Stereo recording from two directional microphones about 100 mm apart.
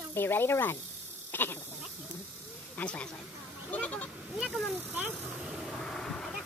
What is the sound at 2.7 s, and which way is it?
Speech, 10° left (ahead or behind).